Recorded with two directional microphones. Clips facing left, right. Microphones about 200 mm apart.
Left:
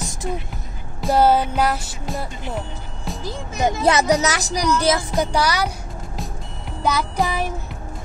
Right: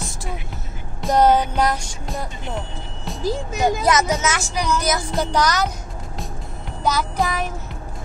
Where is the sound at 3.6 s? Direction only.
30° left (ahead or behind).